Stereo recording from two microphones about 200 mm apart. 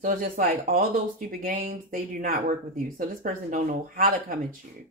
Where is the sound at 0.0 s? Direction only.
40° right (ahead or behind).